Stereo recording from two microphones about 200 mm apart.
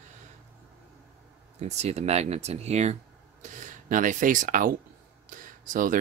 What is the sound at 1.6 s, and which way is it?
Speech, 35° right (ahead or behind).